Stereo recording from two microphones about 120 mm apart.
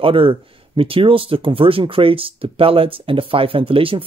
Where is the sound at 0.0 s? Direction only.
50° right (ahead or behind).